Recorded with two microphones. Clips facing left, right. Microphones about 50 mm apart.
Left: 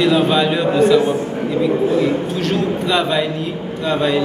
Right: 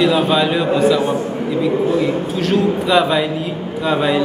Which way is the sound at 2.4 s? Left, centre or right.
Centre.